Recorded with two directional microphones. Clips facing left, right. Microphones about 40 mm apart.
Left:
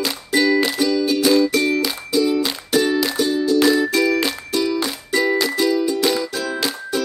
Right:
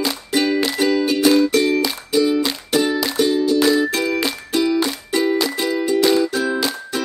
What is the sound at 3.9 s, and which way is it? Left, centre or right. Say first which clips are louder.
Music: left 2 dB; right.